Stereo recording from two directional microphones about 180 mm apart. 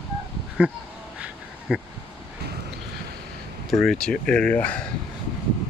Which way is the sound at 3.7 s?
Centre (ahead or behind).